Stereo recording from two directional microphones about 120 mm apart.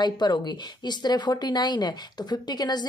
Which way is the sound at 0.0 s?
35° left (ahead or behind).